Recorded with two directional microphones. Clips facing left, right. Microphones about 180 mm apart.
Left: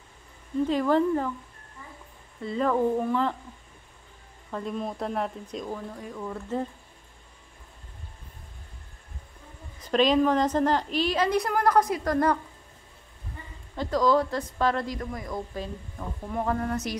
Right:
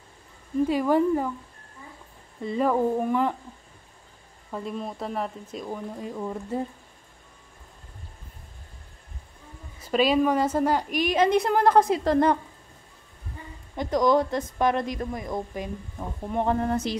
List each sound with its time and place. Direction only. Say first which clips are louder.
0.7 s a woman's voice: right 1 dB; 10° right (ahead or behind)
2.4 s a woman's voice: right 1 dB; 15° right (ahead or behind)
4.5 s speech: left 1 dB; 5° right (ahead or behind)
5.9 s a woman's voice: right 3 dB; 20° right (ahead or behind)
9.8 s a woman's voice: even; 5° right (ahead or behind); by 12.4 s 25° right (ahead or behind)
13.7 s a woman's voice: right 2 dB; 20° right (ahead or behind)